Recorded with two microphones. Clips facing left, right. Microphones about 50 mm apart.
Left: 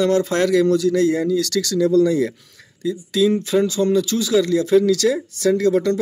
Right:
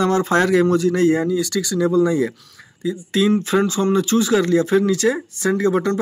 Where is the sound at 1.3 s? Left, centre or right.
Centre.